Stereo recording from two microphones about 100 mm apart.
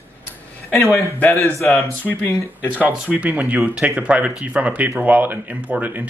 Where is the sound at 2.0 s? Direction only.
20° left (ahead or behind).